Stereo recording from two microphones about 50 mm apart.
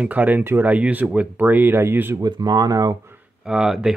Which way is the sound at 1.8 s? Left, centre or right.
Right.